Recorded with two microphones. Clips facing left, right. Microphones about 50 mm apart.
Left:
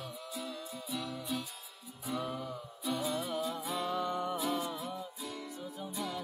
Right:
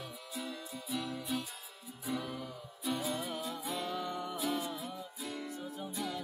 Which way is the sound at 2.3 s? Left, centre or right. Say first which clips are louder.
Left 3 dB; centre.